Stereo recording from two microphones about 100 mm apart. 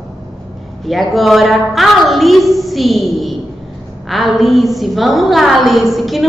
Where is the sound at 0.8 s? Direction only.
Centre (ahead or behind).